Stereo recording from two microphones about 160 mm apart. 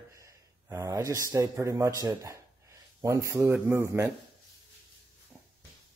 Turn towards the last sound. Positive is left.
turn(degrees=-15)  # may be behind; listen again after turning